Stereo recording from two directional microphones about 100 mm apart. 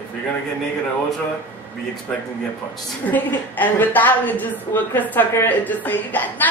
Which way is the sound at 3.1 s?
15° left (ahead or behind).